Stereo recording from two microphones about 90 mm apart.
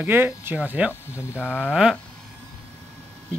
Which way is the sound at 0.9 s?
30° left (ahead or behind).